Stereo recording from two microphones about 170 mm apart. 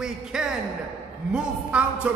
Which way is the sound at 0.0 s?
5° right (ahead or behind).